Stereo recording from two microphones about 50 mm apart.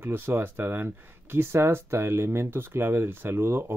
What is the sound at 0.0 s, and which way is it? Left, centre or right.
Speech, right.